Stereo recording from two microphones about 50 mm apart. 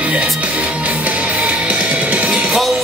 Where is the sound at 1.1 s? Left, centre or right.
Right.